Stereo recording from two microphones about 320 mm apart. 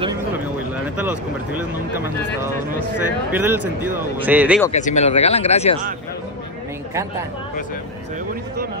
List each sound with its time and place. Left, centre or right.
0.0 s speech: centre
3.3 s speech: centre
4.7 s speech: left